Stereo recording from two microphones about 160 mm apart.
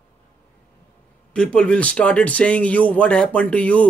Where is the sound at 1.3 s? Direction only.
5° left (ahead or behind).